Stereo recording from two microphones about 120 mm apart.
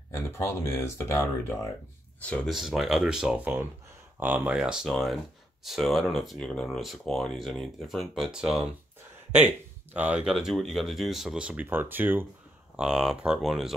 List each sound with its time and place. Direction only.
0.1 s speech: 20° left (ahead or behind)
2.2 s speech: 10° left (ahead or behind)
2.5 s speech: centre (ahead or behind)
4.6 s speech: 5° right (ahead or behind)
9.9 s speech: 10° right (ahead or behind)
12.7 s speech: 5° right (ahead or behind)